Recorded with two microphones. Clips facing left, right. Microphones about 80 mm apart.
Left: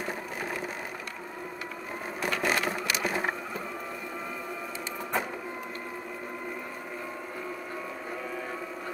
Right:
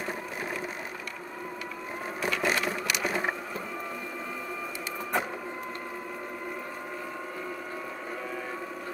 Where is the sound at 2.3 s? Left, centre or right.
Left.